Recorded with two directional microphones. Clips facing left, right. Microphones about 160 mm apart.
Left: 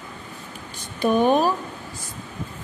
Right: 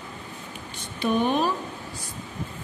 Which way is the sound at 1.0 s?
45° left (ahead or behind).